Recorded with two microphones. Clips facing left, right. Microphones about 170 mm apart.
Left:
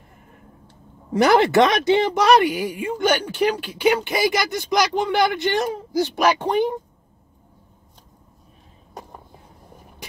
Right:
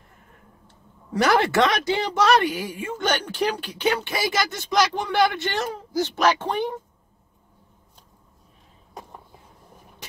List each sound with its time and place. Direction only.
1.1 s speech: 20° left (ahead or behind)